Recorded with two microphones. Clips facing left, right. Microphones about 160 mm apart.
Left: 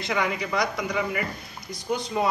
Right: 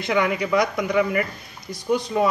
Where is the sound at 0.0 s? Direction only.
60° right (ahead or behind).